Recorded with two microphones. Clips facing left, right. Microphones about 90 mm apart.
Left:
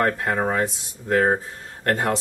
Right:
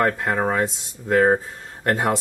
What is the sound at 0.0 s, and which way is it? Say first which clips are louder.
Speech: right 1 dB; centre (ahead or behind).